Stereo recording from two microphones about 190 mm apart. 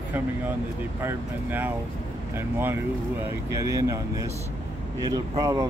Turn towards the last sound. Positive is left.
turn(degrees=-20)  # may be behind; listen again after turning